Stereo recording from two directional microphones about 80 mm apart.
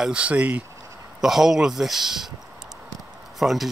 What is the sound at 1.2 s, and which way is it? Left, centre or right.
Speech, centre.